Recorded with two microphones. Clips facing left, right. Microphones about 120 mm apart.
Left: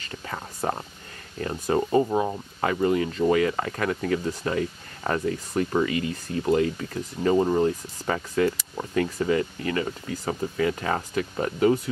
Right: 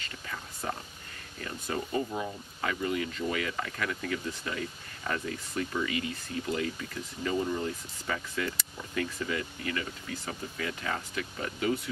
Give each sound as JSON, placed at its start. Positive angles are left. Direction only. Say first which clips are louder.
{"t": 0.3, "sound": "whispering", "louder": "left 8 dB", "side_deg": 45}
{"t": 1.4, "sound": "speech", "louder": "left 10 dB", "side_deg": 45}